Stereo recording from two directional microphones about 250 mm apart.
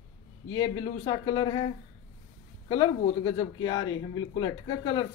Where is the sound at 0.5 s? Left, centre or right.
Centre.